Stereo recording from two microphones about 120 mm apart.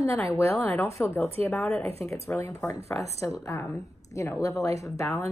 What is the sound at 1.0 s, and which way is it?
Speech, 10° left (ahead or behind).